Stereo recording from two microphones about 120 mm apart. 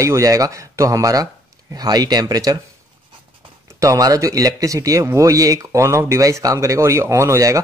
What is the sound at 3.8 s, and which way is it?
Speech, 30° right (ahead or behind).